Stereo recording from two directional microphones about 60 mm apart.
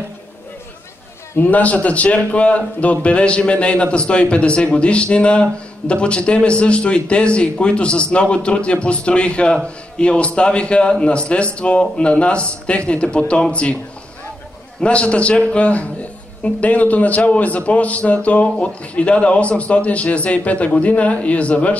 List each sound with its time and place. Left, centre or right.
1.5 s a man's voice: left
14.8 s a man's voice: centre